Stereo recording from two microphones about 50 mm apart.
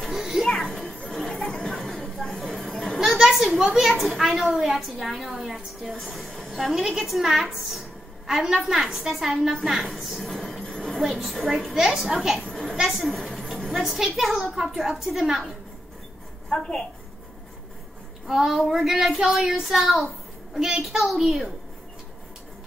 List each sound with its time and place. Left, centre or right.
0.0 s music: centre
0.7 s children playing: centre
1.4 s a sound: centre
3.0 s a sound: centre
3.7 s a woman's voice: centre
13.1 s a sound: centre
13.9 s a woman's voice: centre
16.4 s a woman's voice: centre
18.2 s speech: centre